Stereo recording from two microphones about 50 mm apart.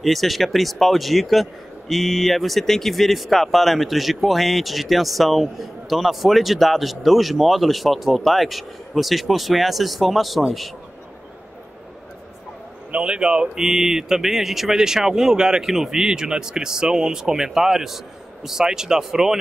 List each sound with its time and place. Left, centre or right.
0.0 s speech: centre
12.9 s a man's voice: centre